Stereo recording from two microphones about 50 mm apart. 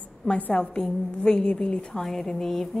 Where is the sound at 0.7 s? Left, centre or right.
Centre.